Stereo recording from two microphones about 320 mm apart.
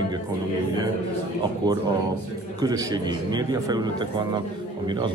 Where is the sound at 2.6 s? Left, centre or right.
Centre.